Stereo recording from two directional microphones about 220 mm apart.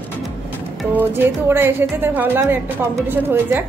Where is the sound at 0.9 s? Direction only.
10° right (ahead or behind).